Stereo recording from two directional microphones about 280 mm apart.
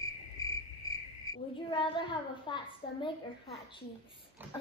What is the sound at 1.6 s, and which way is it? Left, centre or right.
A child's voice, centre.